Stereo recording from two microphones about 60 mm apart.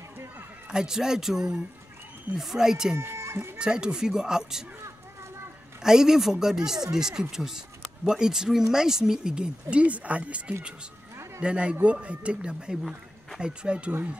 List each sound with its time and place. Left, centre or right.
0.7 s speech: centre
3.0 s chicken: right
3.5 s speech: centre
5.8 s speech: centre